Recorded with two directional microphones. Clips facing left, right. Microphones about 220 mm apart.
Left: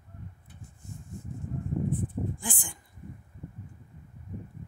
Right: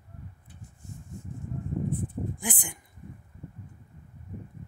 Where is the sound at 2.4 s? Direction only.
20° right (ahead or behind).